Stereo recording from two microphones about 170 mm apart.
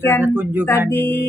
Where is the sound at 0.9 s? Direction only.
10° left (ahead or behind).